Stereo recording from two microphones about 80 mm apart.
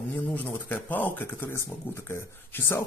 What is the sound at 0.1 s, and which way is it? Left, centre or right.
A man's voice, left.